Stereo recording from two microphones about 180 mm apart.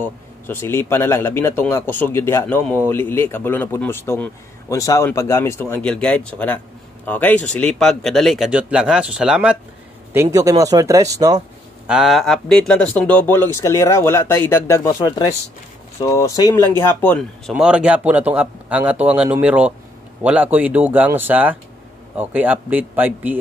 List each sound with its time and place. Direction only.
0.0 s a man's voice: 10° left (ahead or behind); by 9.6 s 5° right (ahead or behind)
10.1 s speech: 15° right (ahead or behind)
11.9 s a man's voice: centre (ahead or behind); by 16.6 s 20° left (ahead or behind)
17.0 s a man's voice: 5° left (ahead or behind); by 23.4 s 10° right (ahead or behind)